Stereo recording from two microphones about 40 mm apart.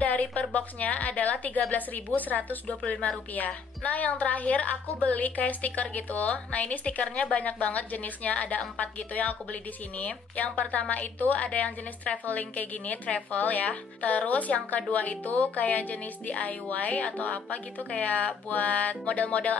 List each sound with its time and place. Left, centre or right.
0.0 s a woman's voice: left
2.8 s a woman's voice: left
7.3 s a woman's voice: left